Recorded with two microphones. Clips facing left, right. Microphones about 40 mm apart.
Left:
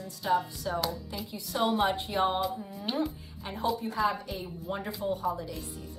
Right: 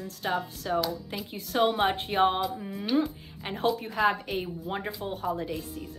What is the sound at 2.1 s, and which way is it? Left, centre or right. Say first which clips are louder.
Speech: right 4 dB; right.